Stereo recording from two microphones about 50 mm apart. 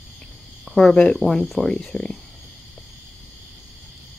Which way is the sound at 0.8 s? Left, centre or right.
Centre.